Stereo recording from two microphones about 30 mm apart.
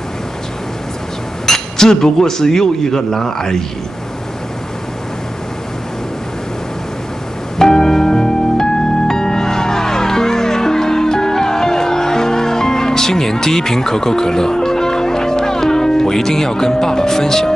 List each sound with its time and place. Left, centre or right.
1.4 s speech: centre
7.5 s music: centre